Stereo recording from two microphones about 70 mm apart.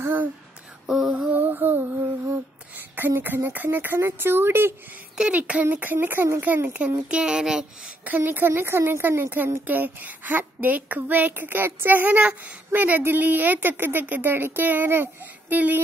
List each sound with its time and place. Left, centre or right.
0.0 s speech: right
0.8 s a sound: centre
1.3 s a woman's voice: right
5.1 s speech: centre
5.4 s a woman's voice: right
7.1 s speech: centre
8.0 s speech: right
9.3 s a woman's voice: right